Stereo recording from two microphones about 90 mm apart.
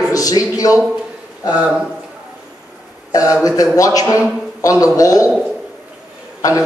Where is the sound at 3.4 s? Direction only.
40° left (ahead or behind).